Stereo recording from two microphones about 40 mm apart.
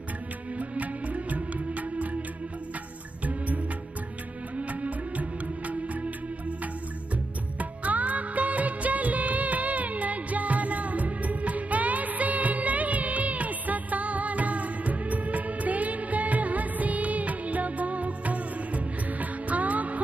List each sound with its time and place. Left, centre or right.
0.6 s music: right
3.3 s music: right
7.5 s music of bollywood: right